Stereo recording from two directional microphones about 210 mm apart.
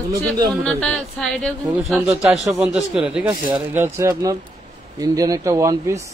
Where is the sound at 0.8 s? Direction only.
Centre (ahead or behind); by 6.1 s 15° right (ahead or behind).